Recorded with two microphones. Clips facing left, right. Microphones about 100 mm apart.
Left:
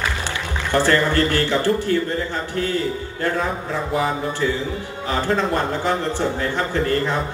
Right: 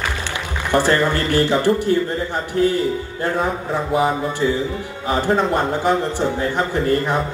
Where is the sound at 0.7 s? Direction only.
15° right (ahead or behind).